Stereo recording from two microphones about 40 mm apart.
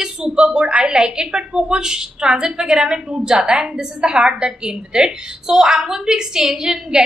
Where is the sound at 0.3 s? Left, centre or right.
Right.